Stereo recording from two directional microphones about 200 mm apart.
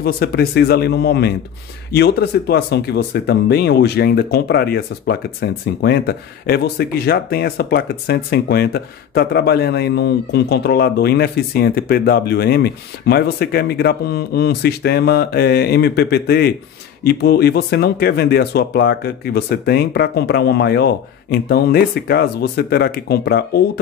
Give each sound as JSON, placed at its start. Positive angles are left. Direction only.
{"t": 0.0, "sound": "speech", "side_deg": 50}